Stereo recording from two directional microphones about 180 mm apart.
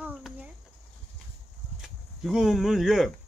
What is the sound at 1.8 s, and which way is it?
Speech, centre (ahead or behind).